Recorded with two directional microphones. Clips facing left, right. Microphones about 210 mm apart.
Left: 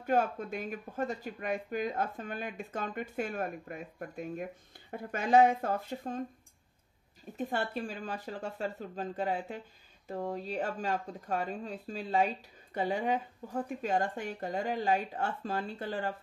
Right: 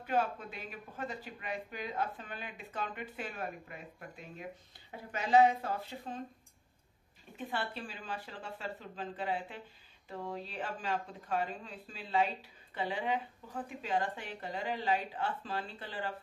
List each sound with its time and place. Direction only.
0.0 s speech: 45° left (ahead or behind)
7.3 s speech: 45° left (ahead or behind)